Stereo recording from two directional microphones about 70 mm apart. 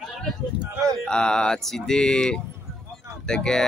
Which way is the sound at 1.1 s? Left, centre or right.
Centre.